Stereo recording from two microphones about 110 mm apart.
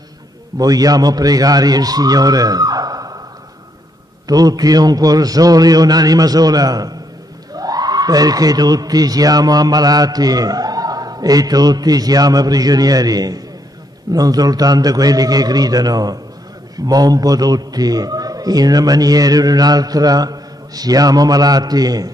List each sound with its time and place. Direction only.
0.6 s speech: 35° right (ahead or behind)
4.3 s speech: 35° right (ahead or behind)